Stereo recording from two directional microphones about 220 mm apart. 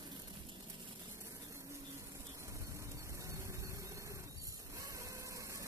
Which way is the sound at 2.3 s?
15° right (ahead or behind).